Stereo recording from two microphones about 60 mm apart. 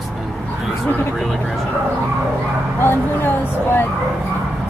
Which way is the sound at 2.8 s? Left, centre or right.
Left.